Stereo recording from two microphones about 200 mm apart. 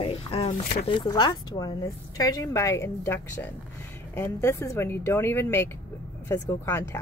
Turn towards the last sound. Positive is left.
turn(degrees=10)  # may be behind; listen again after turning